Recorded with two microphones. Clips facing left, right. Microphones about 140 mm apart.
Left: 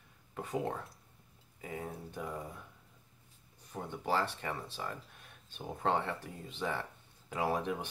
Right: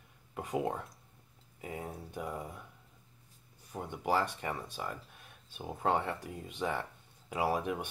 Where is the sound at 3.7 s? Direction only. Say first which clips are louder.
Right 2 dB; 15° right (ahead or behind).